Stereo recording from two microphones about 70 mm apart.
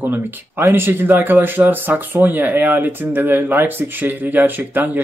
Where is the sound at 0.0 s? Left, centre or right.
Right.